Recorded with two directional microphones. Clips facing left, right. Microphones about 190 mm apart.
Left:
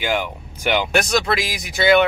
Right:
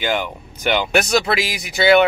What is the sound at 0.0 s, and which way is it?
Speech, 10° left (ahead or behind).